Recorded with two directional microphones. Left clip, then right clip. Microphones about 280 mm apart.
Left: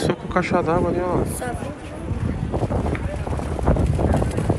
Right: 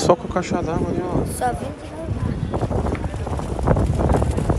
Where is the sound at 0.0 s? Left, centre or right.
Centre.